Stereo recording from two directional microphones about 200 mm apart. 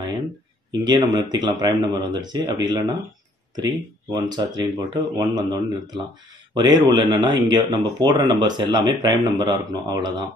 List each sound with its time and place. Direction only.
0.7 s speech: 20° right (ahead or behind)
4.1 s speech: 20° right (ahead or behind)